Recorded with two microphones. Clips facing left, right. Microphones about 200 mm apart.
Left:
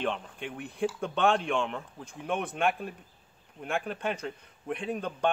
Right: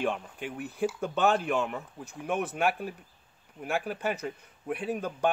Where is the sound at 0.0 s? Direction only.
5° right (ahead or behind).